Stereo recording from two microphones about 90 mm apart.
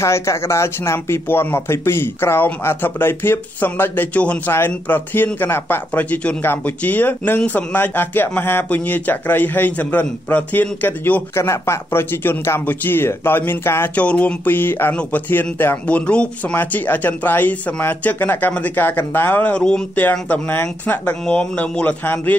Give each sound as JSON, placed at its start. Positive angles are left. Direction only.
{"t": 0.0, "sound": "speech", "side_deg": 30}
{"t": 11.3, "sound": "speech", "side_deg": 30}